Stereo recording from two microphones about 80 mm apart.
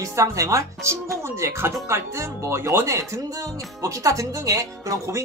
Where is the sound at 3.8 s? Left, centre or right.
Right.